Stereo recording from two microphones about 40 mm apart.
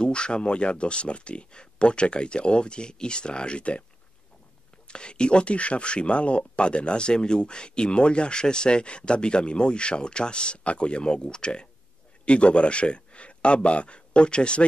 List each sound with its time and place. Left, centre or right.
0.0 s speech: left
4.8 s speech: left